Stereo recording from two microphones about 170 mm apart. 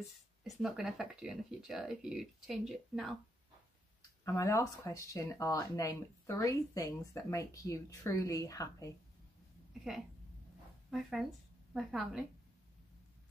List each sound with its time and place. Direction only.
0.0 s speech: centre (ahead or behind)
4.2 s speech: 20° left (ahead or behind)
10.9 s speech: centre (ahead or behind)